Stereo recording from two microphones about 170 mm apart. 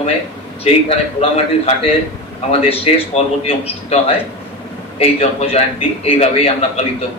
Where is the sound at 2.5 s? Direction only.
35° left (ahead or behind).